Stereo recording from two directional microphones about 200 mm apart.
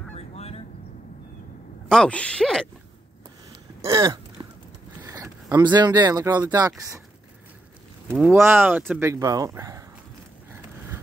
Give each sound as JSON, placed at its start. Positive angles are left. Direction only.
{"t": 0.1, "sound": "a sound", "side_deg": 30}
{"t": 1.9, "sound": "speech", "side_deg": 5}
{"t": 3.8, "sound": "speech", "side_deg": -15}
{"t": 8.1, "sound": "speech", "side_deg": -5}